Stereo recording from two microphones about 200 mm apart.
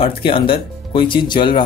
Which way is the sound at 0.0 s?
25° left (ahead or behind).